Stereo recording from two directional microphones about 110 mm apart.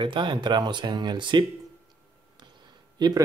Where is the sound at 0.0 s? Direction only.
45° right (ahead or behind).